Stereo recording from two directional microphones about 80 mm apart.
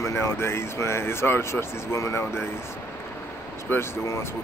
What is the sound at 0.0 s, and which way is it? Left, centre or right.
Speech, left.